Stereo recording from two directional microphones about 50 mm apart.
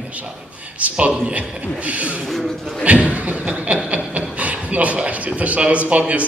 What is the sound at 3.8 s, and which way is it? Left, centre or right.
Rub, right.